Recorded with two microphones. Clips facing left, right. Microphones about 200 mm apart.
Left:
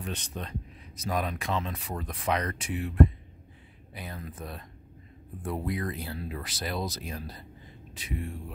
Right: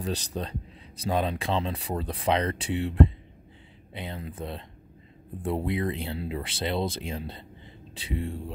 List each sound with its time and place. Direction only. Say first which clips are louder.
0.0 s speech: right 6 dB; 35° right (ahead or behind)
3.9 s speech: right 4 dB; 25° right (ahead or behind)